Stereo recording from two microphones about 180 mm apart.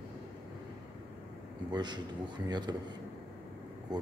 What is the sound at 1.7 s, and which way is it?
Speech, 25° right (ahead or behind).